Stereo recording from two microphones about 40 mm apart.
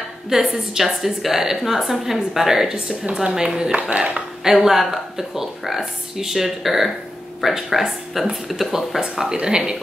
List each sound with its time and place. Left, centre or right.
0.3 s a woman's voice: centre
2.7 s a woman's voice: centre
4.6 s a woman's voice: centre
9.0 s a woman's voice: centre